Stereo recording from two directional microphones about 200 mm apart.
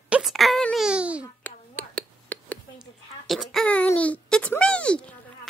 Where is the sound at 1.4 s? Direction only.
5° left (ahead or behind).